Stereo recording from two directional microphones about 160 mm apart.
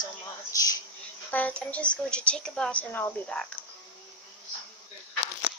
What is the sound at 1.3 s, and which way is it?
A woman's voice, 10° left (ahead or behind).